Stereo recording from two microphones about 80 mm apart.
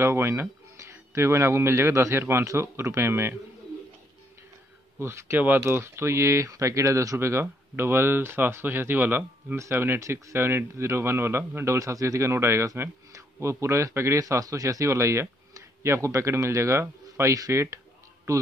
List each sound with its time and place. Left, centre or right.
0.0 s speech: right
4.9 s speech: right